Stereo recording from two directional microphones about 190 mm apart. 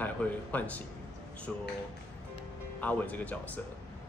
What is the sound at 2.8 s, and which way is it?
Speech, 10° left (ahead or behind).